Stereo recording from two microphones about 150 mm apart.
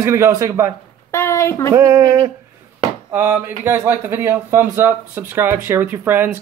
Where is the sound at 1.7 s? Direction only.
20° right (ahead or behind).